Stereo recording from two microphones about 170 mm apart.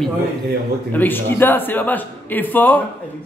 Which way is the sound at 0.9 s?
10° left (ahead or behind).